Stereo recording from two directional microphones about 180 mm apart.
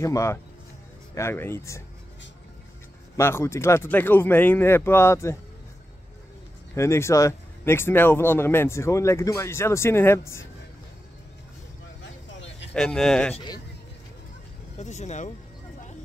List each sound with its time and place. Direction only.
0.0 s speech: 15° left (ahead or behind)
3.2 s speech: 15° left (ahead or behind)
6.7 s speech: 15° left (ahead or behind)
12.0 s a sound: 80° left
12.7 s a man's voice: 5° left (ahead or behind)
14.8 s speech: 40° left (ahead or behind)